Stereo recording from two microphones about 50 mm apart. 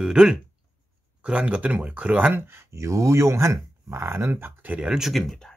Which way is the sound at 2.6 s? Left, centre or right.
Right.